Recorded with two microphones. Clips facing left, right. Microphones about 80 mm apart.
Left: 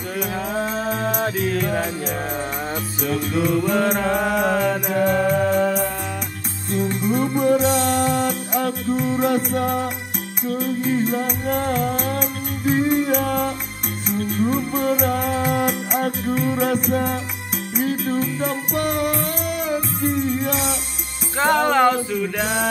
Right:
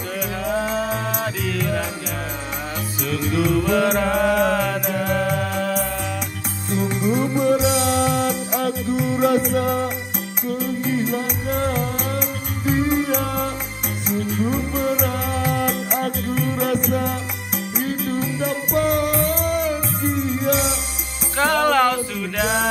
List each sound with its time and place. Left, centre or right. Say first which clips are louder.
0.6 s music: even; left
3.0 s music: even; left
3.4 s music: right 1 dB; centre
5.1 s music: left 1 dB; centre
6.7 s music: even; centre
12.6 s music: left 1 dB; centre
14.5 s music: left 1 dB; centre
15.0 s music: left 2 dB; left
17.7 s music: left 3 dB; centre
21.4 s music: even; centre
22.4 s music: right 5 dB; centre